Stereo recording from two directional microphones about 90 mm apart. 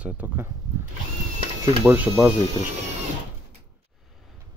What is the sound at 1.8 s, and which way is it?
Speech, 20° right (ahead or behind).